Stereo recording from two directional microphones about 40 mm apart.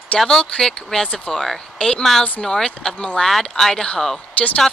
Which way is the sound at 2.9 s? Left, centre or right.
Left.